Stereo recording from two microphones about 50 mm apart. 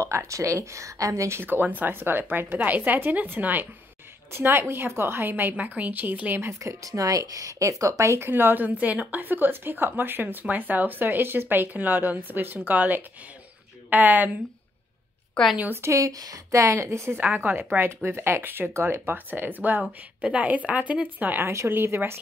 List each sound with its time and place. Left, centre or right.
0.1 s speech: right
1.4 s speech: right
4.3 s a woman's voice: right
7.4 s speech: right
8.3 s speech: right
9.1 s speech: right
15.7 s a woman's voice: right
17.3 s a woman's voice: right
18.7 s speech: right
19.0 s speech: right
20.2 s speech: right
21.4 s a woman's voice: right
21.6 s a woman's voice: right